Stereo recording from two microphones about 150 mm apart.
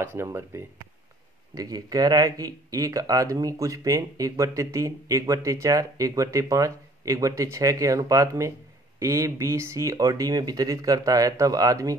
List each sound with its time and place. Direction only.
0.0 s speech: 15° right (ahead or behind)